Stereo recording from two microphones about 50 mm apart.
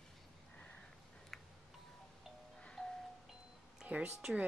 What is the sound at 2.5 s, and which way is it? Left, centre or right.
Music, centre.